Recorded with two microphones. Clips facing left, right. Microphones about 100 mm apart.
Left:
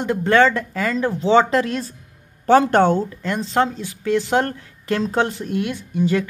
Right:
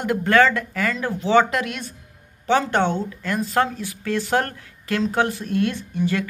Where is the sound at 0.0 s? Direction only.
25° left (ahead or behind).